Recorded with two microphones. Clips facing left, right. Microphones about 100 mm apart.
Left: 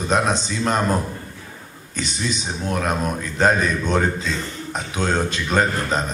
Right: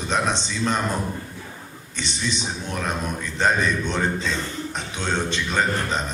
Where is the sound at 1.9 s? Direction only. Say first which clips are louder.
Left 2 dB; 40° left (ahead or behind).